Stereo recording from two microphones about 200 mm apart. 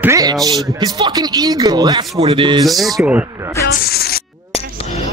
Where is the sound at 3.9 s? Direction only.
50° left (ahead or behind).